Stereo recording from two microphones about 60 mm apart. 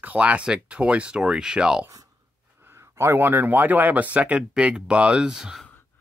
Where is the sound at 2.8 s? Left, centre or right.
Right.